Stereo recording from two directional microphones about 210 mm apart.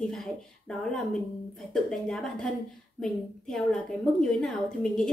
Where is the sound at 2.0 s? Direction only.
5° left (ahead or behind).